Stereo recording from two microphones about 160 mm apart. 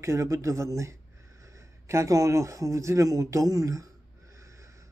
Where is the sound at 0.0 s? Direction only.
20° right (ahead or behind).